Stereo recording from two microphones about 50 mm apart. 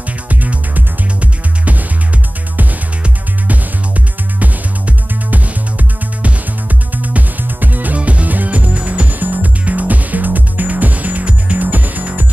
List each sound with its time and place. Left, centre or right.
0.3 s music: right
4.4 s music: right